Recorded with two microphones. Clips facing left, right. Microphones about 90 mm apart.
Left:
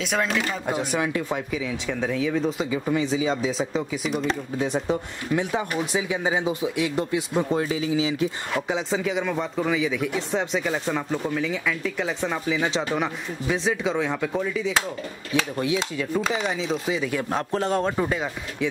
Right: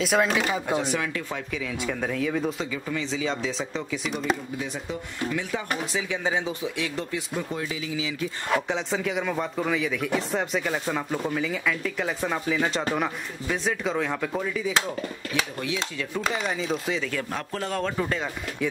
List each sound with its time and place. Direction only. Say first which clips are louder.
0.0 s speech: right 2 dB; 5° right (ahead or behind)
0.9 s speech: left 4 dB; 15° left (ahead or behind); by 2.7 s centre (ahead or behind)
2.7 s speech: left 6 dB; 15° left (ahead or behind); by 4.4 s centre (ahead or behind)
5.3 s speech: left 7 dB; 25° left (ahead or behind)
5.9 s speech: left 3 dB; 15° left (ahead or behind)
7.3 s speech: left 8 dB; 35° left (ahead or behind)
8.6 s speech: left 2 dB; 5° left (ahead or behind)
15.5 s speech: left 5 dB; 20° left (ahead or behind)
16.1 s speech: left 2 dB; centre (ahead or behind)
17.3 s speech: left 6 dB; 25° left (ahead or behind)